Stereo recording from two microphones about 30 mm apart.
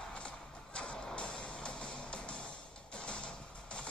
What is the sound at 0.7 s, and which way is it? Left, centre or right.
Music, left.